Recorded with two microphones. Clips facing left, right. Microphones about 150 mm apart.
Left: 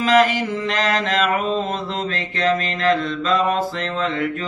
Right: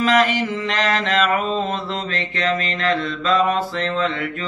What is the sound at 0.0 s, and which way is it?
Mantra, 40° left (ahead or behind).